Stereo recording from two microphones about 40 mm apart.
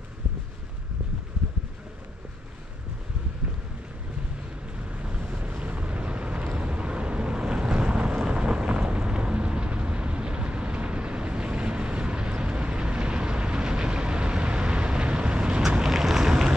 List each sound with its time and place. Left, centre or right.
4.9 s vehicle: right
8.3 s thunder: right
8.9 s vehicle: right
15.8 s vehicle: centre